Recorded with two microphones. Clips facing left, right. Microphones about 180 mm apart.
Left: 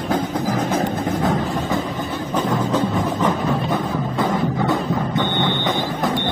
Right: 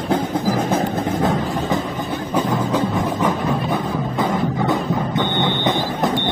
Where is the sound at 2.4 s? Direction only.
10° right (ahead or behind).